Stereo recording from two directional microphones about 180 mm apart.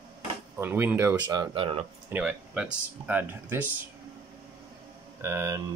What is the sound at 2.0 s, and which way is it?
Speech, 10° right (ahead or behind).